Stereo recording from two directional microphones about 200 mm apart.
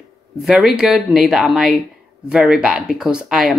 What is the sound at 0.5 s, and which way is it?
A woman's voice, centre (ahead or behind).